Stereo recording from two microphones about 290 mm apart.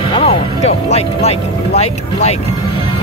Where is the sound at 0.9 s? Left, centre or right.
Left.